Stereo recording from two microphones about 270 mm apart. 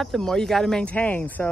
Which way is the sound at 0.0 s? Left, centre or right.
Centre.